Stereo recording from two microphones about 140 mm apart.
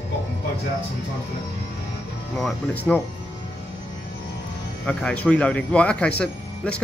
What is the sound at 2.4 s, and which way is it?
Speech, 5° left (ahead or behind).